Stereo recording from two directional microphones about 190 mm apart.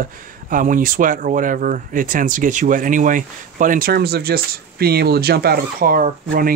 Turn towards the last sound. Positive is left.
turn(degrees=-50)  # may be behind; listen again after turning